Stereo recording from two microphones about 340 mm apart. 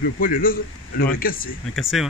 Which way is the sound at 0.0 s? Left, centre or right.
Left.